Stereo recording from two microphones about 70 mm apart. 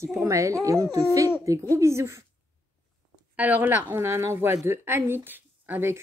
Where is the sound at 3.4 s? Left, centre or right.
Right.